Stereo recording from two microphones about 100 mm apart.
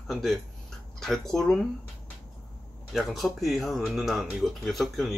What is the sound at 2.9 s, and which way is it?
A man's voice, centre (ahead or behind).